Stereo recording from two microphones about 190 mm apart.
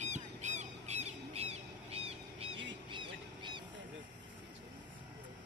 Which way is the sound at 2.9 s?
25° right (ahead or behind).